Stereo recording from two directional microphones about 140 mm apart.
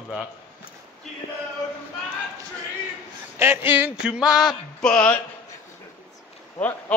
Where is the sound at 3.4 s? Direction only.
15° right (ahead or behind); by 5.1 s 5° left (ahead or behind).